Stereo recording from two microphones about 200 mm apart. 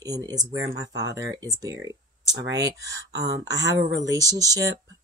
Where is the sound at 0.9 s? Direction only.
65° right (ahead or behind).